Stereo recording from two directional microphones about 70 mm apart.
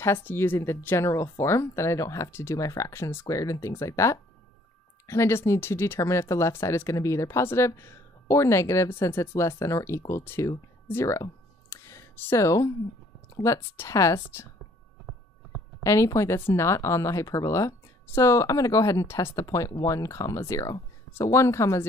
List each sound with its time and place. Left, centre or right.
0.0 s speech: left
11.7 s a sound: left
13.4 s speech: left
15.8 s speech: left